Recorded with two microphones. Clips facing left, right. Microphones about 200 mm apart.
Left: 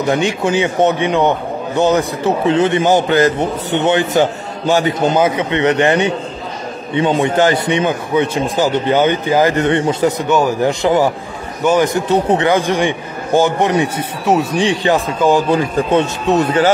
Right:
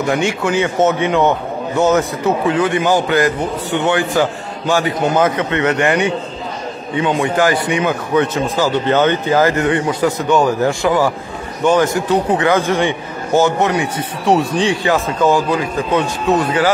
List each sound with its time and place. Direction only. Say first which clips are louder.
0.1 s a man's voice: left 2 dB; 15° left (ahead or behind)
5.2 s a man's voice: left 1 dB; 10° left (ahead or behind)
11.6 s a man's voice: even; 10° left (ahead or behind)
11.9 s a man's voice: left 1 dB; 20° left (ahead or behind)
13.9 s speech: even; 5° left (ahead or behind)
14.6 s a man's voice: left 1 dB; 20° left (ahead or behind)
15.5 s a man's voice: left 3 dB; 30° left (ahead or behind)